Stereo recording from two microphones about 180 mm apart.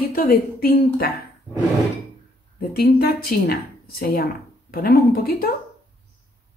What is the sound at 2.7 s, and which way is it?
A woman's voice, 60° left (ahead or behind).